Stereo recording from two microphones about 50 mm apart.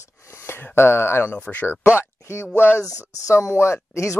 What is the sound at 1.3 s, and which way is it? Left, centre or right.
Speech, left.